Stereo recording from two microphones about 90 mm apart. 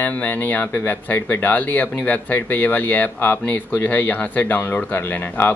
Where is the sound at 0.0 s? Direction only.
20° left (ahead or behind).